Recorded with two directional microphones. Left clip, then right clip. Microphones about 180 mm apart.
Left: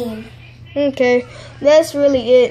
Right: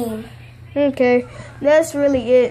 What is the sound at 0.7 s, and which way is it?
Speech, 15° right (ahead or behind).